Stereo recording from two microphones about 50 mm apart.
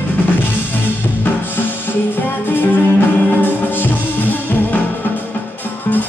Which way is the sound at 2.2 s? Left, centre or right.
Left.